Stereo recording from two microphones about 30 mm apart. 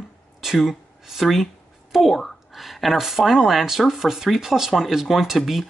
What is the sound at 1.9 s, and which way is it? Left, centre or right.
Speech, centre.